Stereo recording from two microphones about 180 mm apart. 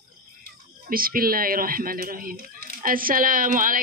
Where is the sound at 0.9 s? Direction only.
55° right (ahead or behind).